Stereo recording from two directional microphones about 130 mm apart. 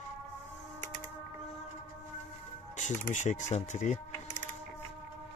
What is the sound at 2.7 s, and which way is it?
Speech, 70° left (ahead or behind).